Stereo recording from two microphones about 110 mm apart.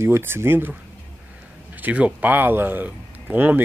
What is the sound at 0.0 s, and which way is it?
Speech, 20° right (ahead or behind).